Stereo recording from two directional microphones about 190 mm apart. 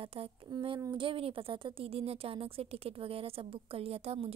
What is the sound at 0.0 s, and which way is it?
A woman's voice, 30° right (ahead or behind).